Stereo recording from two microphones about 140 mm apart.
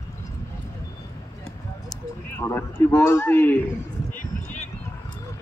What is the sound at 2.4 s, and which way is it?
A man's voice, 20° left (ahead or behind).